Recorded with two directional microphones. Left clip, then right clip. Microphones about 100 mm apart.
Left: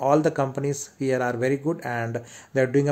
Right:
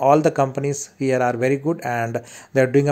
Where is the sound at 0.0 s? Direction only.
25° right (ahead or behind).